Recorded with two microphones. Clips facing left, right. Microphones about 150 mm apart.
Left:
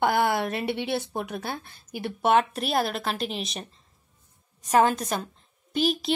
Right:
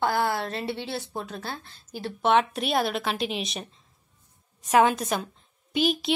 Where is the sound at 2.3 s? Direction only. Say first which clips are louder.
Even; centre (ahead or behind).